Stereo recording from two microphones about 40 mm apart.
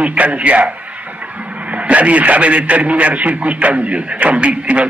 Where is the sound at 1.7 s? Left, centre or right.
Right.